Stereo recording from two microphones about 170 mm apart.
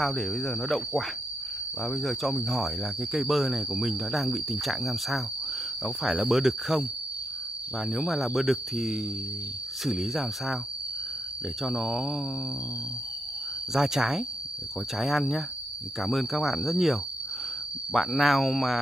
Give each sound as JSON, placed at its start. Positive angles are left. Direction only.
{"t": 0.0, "sound": "speech", "side_deg": 0}
{"t": 7.9, "sound": "speech", "side_deg": 0}
{"t": 11.6, "sound": "speech", "side_deg": 0}
{"t": 13.7, "sound": "speech", "side_deg": -5}